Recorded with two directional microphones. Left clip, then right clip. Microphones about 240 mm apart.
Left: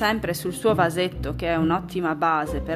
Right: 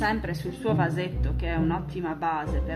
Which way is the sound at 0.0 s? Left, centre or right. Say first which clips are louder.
Left 4 dB; left.